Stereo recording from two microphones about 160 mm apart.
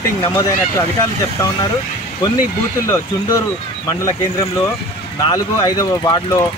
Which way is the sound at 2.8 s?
15° left (ahead or behind).